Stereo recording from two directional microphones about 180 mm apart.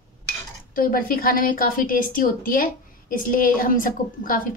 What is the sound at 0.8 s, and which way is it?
A woman's voice, 55° left (ahead or behind).